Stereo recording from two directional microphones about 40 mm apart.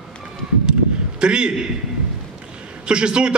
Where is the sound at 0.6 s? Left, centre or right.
Right.